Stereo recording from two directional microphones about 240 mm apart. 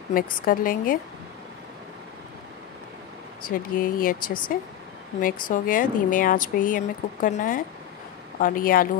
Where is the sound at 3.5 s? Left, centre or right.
Left.